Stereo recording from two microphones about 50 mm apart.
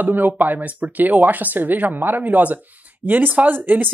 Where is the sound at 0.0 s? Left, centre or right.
Right.